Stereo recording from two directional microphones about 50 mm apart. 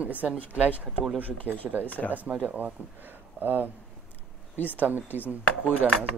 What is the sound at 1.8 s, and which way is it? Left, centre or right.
Speech, left.